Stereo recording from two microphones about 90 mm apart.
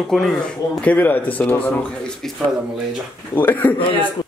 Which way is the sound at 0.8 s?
20° left (ahead or behind).